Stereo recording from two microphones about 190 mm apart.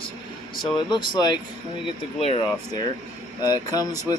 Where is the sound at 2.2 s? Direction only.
35° left (ahead or behind).